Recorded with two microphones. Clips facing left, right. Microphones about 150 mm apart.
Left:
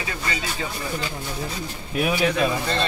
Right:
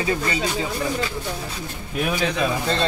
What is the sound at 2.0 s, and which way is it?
Speech, 5° left (ahead or behind).